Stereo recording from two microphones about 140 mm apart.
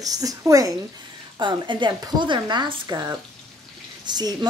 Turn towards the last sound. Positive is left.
turn(degrees=-30)  # may be behind; listen again after turning